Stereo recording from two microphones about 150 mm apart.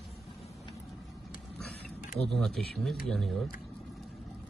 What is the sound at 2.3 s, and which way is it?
Speech, centre (ahead or behind).